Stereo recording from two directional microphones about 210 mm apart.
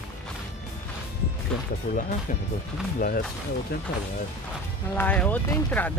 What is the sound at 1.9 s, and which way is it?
Speech, 40° left (ahead or behind).